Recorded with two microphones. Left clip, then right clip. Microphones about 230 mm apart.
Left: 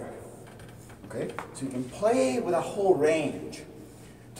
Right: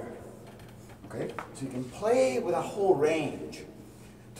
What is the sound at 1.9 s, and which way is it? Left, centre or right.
A man's voice, centre.